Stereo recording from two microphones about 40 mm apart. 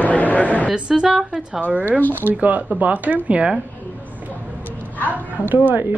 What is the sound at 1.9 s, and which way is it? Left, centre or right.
Speech, left.